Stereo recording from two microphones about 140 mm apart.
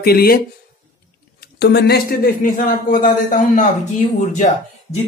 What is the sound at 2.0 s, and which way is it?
A man's voice, 90° left.